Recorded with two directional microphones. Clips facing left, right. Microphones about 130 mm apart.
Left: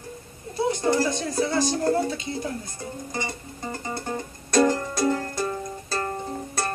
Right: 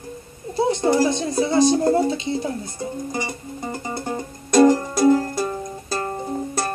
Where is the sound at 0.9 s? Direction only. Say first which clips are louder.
Right 5 dB; 20° right (ahead or behind).